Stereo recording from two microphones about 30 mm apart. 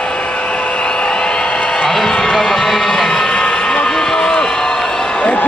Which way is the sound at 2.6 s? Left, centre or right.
Centre.